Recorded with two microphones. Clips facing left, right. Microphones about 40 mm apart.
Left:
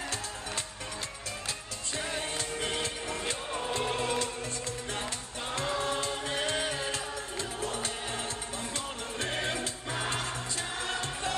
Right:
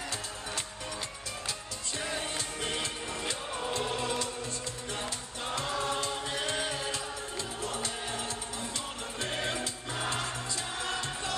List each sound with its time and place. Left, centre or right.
2.6 s music: left
5.8 s music: left
9.4 s music: left